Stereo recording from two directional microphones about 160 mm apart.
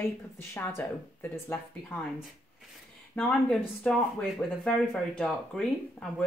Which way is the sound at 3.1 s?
5° left (ahead or behind).